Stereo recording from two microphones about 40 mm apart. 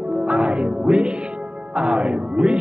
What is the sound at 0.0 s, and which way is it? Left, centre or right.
Speech, right.